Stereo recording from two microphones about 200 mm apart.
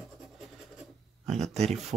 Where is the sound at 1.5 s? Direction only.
35° right (ahead or behind).